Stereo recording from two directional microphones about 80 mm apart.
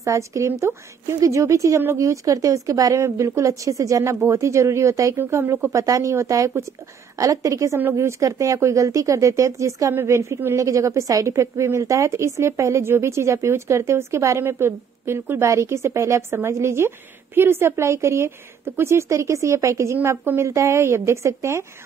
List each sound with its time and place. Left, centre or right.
0.0 s a woman's voice: right
5.1 s a woman's voice: right
5.7 s a woman's voice: right